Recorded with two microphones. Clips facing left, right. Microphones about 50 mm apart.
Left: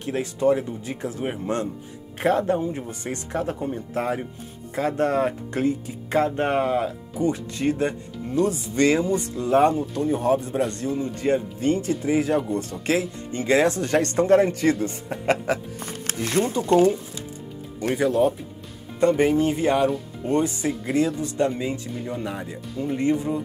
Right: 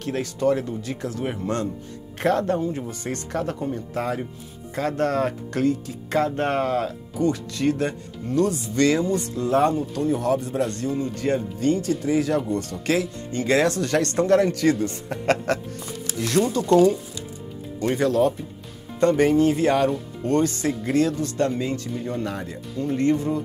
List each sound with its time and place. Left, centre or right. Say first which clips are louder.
0.0 s speech: left 1 dB; left
2.1 s speech: even; centre
15.0 s speech: even; centre
15.8 s music: even; left
16.2 s speech: right 2 dB; left
17.7 s speech: even; centre